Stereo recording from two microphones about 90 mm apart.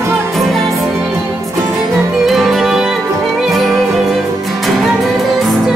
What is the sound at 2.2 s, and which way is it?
Music, centre (ahead or behind).